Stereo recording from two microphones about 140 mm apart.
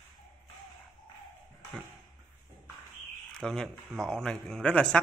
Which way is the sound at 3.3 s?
5° left (ahead or behind).